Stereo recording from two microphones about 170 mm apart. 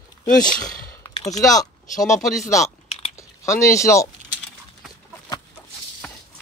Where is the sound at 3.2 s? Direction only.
15° left (ahead or behind).